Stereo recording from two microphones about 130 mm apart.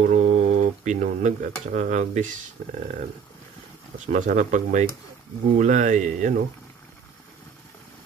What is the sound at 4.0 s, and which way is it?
Speech, 70° right (ahead or behind).